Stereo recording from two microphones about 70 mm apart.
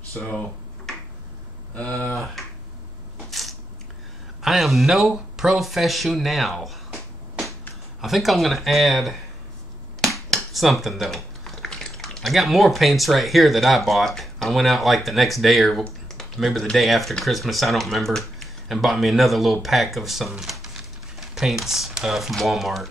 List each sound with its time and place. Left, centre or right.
0.9 s a sound: centre
1.8 s speech: left
2.1 s speech: centre
3.3 s crushing: centre
4.4 s speech: centre
8.0 s speech: centre
16.2 s a sound: centre
16.7 s speech: centre